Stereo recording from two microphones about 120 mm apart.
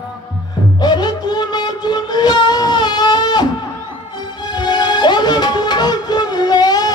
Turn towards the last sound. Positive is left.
turn(degrees=35)  # may be behind; listen again after turning